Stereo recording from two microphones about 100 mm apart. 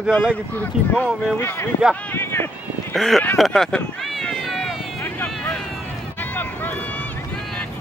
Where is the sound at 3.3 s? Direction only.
Centre (ahead or behind).